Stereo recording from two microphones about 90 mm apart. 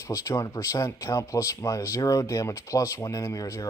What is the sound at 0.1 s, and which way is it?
Speech, 35° left (ahead or behind).